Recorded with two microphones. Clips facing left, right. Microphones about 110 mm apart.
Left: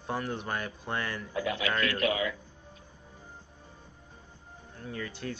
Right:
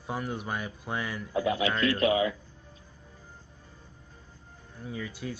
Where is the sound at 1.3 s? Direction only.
25° right (ahead or behind).